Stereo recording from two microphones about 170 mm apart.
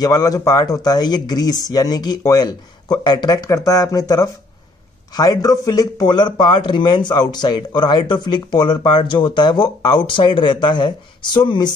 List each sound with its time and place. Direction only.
0.0 s speech: 20° left (ahead or behind)